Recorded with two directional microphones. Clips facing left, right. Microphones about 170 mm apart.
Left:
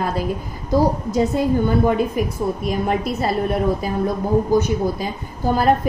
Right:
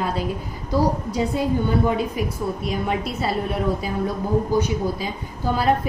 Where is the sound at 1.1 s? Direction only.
45° left (ahead or behind).